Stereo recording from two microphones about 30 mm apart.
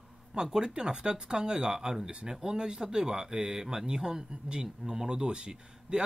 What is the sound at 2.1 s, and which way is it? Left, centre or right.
Speech, right.